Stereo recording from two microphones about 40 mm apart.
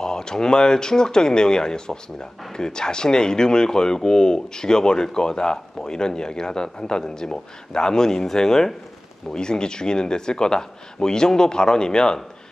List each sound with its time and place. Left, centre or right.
0.0 s speech: centre